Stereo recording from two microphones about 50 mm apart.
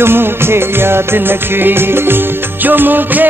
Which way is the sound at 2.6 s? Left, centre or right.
Right.